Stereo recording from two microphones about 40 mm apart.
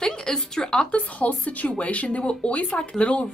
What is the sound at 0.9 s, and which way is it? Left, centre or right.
Speech, left.